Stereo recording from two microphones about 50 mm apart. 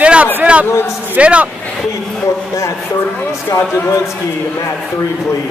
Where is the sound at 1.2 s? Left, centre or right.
Right.